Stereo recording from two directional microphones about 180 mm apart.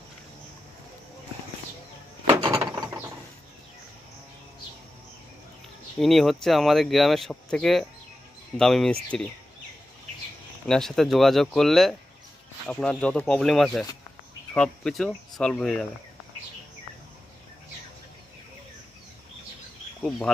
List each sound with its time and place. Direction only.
2.2 s a sound: 15° right (ahead or behind)
5.9 s speech: centre (ahead or behind)
10.7 s speech: centre (ahead or behind)
20.0 s speech: 5° left (ahead or behind)